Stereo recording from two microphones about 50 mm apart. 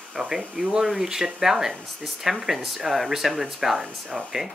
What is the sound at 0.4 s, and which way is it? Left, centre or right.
Speech, centre.